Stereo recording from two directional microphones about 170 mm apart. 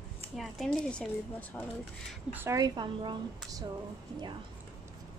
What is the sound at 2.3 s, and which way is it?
A woman's voice, 15° right (ahead or behind).